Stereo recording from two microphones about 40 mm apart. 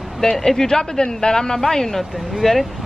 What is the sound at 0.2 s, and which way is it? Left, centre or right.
Speech, centre.